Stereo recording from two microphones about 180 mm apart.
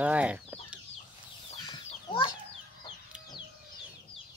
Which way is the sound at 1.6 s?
25° left (ahead or behind).